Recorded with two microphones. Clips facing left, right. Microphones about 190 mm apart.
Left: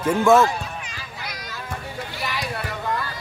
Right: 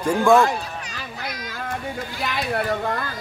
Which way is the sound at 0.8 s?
45° right (ahead or behind).